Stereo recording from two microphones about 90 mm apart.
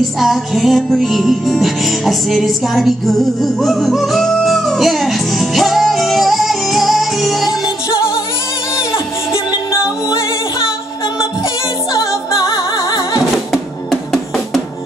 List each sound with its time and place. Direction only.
0.2 s music: centre (ahead or behind)
11.9 s music: 35° left (ahead or behind)
13.5 s drum: centre (ahead or behind)